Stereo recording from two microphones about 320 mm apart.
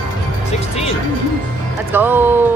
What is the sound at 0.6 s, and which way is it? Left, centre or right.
Speech, centre.